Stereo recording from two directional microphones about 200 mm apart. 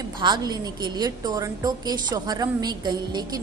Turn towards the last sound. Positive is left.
turn(degrees=-20)  # may be behind; listen again after turning